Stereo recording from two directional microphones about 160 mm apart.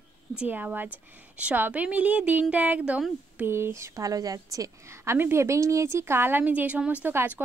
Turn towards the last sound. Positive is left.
turn(degrees=-15)  # may be behind; listen again after turning